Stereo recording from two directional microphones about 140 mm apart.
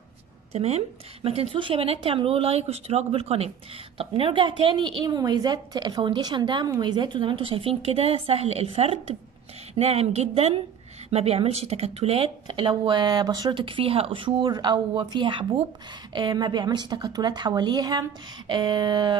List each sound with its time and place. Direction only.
0.5 s a woman's voice: 50° right (ahead or behind); by 19.1 s 30° right (ahead or behind)